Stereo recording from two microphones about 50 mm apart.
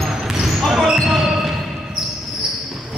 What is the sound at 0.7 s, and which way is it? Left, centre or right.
Basketball bounce, centre.